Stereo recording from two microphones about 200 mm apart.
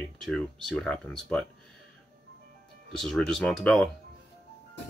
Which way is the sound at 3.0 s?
5° left (ahead or behind).